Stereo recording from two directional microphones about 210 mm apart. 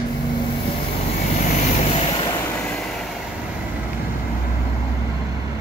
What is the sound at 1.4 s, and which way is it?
Vehicle, 35° left (ahead or behind).